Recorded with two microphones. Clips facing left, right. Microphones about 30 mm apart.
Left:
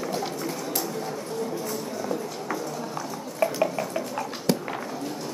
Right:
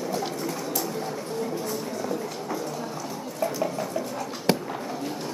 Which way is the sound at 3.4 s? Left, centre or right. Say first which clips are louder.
Left 3 dB; left.